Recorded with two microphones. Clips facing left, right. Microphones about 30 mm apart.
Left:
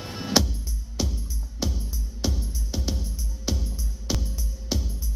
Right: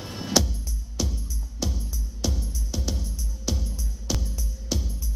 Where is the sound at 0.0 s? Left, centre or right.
Centre.